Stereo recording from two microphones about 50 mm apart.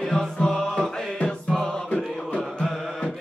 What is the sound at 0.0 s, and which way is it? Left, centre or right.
Music, centre.